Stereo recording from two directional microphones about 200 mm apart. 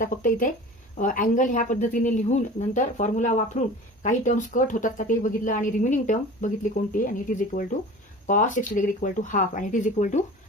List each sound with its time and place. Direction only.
0.0 s speech: 40° left (ahead or behind)